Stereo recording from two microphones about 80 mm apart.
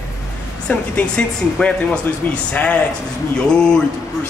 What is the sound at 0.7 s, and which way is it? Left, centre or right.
Speech, centre.